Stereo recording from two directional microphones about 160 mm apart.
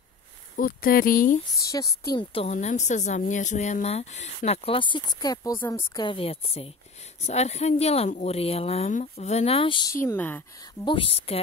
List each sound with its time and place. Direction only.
0.6 s a woman's voice: 65° left (ahead or behind)
1.6 s a woman's voice: 20° left (ahead or behind)
2.3 s speech: 45° left (ahead or behind)
10.0 s speech: 10° left (ahead or behind)
10.9 s speech: 35° left (ahead or behind)